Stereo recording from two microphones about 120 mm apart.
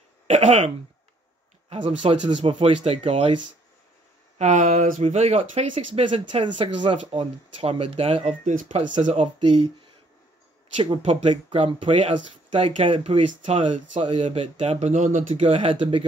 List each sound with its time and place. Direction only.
0.3 s speech: 75° right (ahead or behind)
1.7 s speech: 65° right (ahead or behind)
2.3 s speech: 55° right (ahead or behind)
4.4 s speech: 90° right
6.1 s speech: 45° right (ahead or behind); by 9.3 s 80° right
10.8 s speech: 45° right (ahead or behind)
14.2 s speech: 60° right (ahead or behind)